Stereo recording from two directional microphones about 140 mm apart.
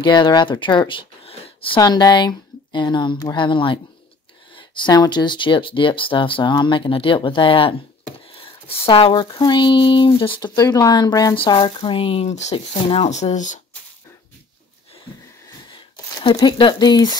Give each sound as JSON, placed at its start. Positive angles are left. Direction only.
{"t": 0.0, "sound": "speech", "side_deg": 30}
{"t": 1.8, "sound": "speech", "side_deg": 30}
{"t": 12.5, "sound": "speech", "side_deg": 40}
{"t": 15.7, "sound": "speech", "side_deg": 35}